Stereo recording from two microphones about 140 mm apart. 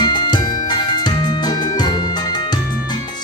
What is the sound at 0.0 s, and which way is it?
Music, 30° left (ahead or behind).